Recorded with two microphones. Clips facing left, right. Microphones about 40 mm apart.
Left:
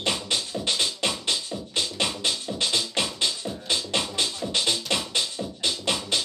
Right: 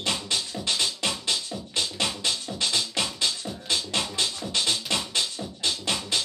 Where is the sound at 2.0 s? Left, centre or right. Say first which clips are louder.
Left 1 dB; centre.